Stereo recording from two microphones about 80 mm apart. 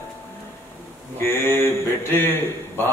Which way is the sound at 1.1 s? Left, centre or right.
Left.